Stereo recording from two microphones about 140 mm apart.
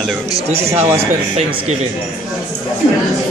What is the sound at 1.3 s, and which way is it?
Speech, 50° right (ahead or behind).